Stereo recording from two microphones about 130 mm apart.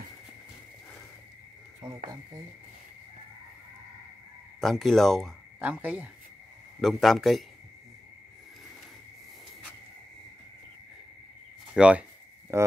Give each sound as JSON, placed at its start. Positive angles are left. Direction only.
{"t": 4.6, "sound": "speech", "side_deg": 0}
{"t": 5.6, "sound": "speech", "side_deg": -15}
{"t": 6.8, "sound": "speech", "side_deg": 0}
{"t": 11.7, "sound": "speech", "side_deg": -10}
{"t": 12.5, "sound": "speech", "side_deg": -20}